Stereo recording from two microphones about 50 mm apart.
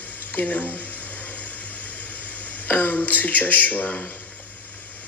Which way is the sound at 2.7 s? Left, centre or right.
Left.